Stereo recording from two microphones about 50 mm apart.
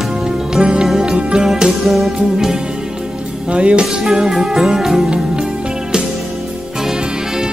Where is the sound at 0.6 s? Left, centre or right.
Centre.